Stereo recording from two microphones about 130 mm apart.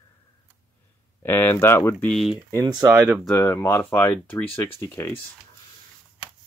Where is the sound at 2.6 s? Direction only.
30° right (ahead or behind).